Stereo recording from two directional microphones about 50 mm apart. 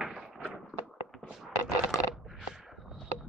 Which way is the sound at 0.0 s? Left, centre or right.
Centre.